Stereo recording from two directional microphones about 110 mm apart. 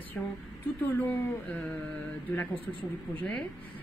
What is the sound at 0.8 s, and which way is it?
Speech, 15° left (ahead or behind).